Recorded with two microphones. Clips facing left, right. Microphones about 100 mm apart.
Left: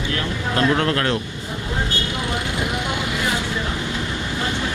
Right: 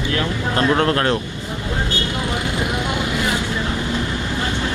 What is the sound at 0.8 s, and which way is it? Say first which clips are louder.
Speech: right 3 dB; 35° right (ahead or behind).